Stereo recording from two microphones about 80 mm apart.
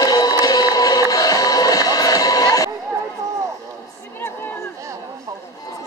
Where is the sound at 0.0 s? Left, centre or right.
Left.